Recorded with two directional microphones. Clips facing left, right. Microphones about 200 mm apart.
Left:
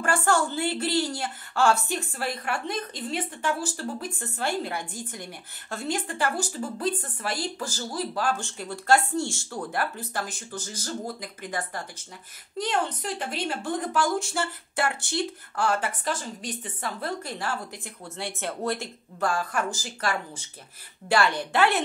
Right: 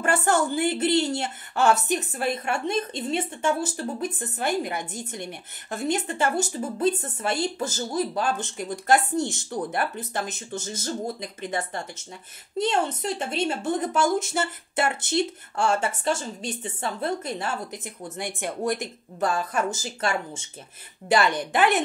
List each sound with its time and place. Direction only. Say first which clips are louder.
0.0 s a woman's voice: right 2 dB; 20° right (ahead or behind)